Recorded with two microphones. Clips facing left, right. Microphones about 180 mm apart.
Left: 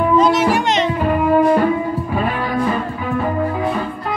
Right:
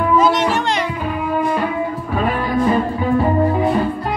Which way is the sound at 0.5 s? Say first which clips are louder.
Left 3 dB; 15° left (ahead or behind).